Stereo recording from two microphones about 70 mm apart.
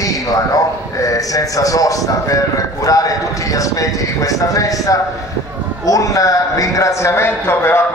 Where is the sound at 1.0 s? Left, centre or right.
Left.